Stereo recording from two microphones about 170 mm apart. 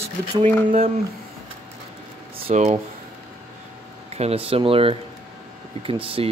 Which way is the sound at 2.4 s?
40° right (ahead or behind).